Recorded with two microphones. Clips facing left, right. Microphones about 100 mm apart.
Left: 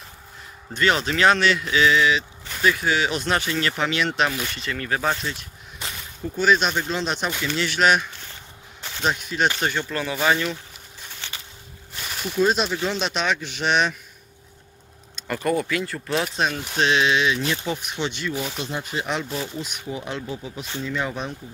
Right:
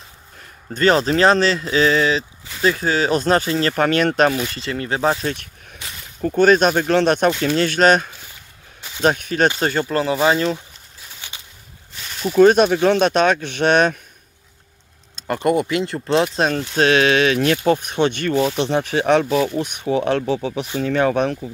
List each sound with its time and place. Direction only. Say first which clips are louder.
0.7 s speech: right 6 dB; 35° right (ahead or behind)
3.7 s speech: right 7 dB; 50° right (ahead or behind)
4.6 s speech: right 4 dB; 30° right (ahead or behind)
5.2 s speech: right 6 dB; 60° right (ahead or behind); by 10.3 s 35° right (ahead or behind)
11.0 s a sound: left 1 dB; 10° right (ahead or behind)
12.0 s a sound: right 6 dB; 5° left (ahead or behind)
12.4 s speech: right 9 dB; 60° right (ahead or behind)
15.2 s speech: right 5 dB; 25° right (ahead or behind)
16.7 s speech: right 5 dB; 50° right (ahead or behind); by 20.6 s 85° right
20.8 s speech: right 10 dB; 65° right (ahead or behind)